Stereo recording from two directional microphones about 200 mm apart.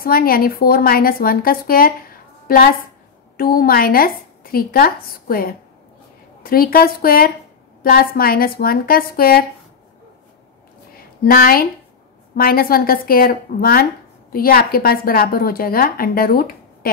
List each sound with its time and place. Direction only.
0.0 s a woman's voice: 45° left (ahead or behind)
11.2 s a woman's voice: 45° left (ahead or behind)